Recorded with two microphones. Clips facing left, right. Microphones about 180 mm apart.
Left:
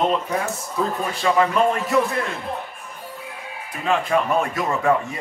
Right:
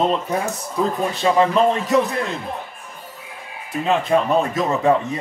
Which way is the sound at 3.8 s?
20° right (ahead or behind).